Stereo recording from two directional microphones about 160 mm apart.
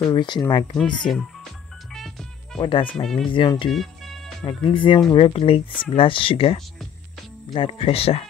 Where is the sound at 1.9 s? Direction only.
Centre (ahead or behind).